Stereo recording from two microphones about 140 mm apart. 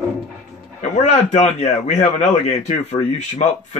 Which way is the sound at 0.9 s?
55° left (ahead or behind).